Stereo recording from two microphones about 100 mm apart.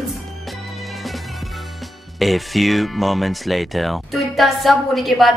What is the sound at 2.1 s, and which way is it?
Speech, centre (ahead or behind).